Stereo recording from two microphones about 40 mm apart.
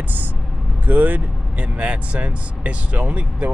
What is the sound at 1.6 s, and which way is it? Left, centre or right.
Speech, right.